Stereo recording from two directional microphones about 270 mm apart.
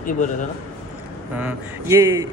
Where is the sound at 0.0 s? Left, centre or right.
Left.